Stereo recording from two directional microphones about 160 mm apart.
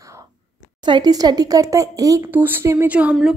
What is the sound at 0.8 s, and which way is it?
A woman's voice, 25° right (ahead or behind).